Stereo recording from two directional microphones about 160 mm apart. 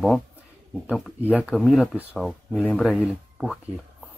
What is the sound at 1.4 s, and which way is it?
Speech, centre (ahead or behind).